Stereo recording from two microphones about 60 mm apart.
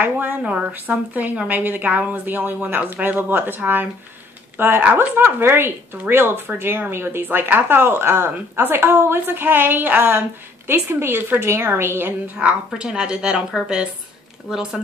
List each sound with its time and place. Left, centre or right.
0.0 s a woman's voice: right
0.4 s a woman's voice: centre
0.7 s speech: right
12.4 s a woman's voice: centre
14.5 s a woman's voice: centre